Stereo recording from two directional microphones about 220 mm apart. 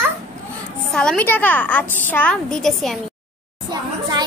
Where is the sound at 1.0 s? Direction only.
5° left (ahead or behind).